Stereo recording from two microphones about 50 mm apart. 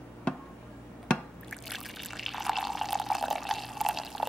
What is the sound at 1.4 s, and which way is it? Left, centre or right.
Water, centre.